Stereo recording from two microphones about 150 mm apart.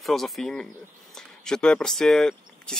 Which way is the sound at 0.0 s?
Centre (ahead or behind).